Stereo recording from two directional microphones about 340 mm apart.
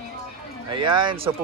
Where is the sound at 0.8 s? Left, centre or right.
Centre.